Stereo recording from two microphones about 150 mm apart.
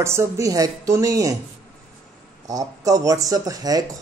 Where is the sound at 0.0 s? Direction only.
20° right (ahead or behind).